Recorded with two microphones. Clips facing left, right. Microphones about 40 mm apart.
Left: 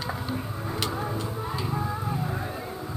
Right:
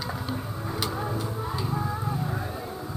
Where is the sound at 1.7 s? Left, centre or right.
Centre.